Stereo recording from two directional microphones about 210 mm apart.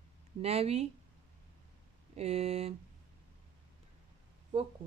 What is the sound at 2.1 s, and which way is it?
Speech, 30° right (ahead or behind).